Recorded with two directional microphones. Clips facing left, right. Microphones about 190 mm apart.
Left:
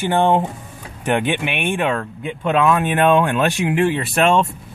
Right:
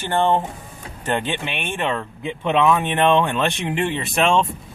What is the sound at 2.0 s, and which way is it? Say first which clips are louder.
Speech: left 2 dB; centre (ahead or behind).